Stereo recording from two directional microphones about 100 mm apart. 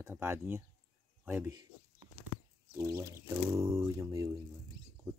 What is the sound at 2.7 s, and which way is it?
Speech, 30° right (ahead or behind).